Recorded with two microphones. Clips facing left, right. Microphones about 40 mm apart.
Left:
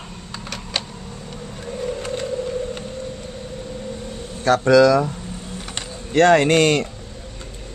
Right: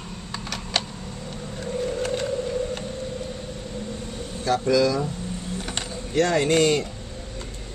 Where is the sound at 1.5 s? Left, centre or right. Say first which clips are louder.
Even; centre.